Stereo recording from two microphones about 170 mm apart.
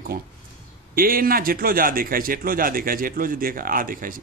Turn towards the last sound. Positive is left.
turn(degrees=-55)  # may be behind; listen again after turning